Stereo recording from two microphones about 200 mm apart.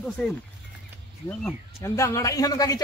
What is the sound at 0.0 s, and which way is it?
Speech, 5° left (ahead or behind).